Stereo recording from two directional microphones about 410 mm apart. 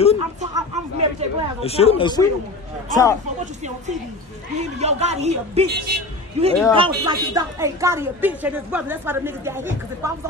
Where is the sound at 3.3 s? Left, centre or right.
Centre.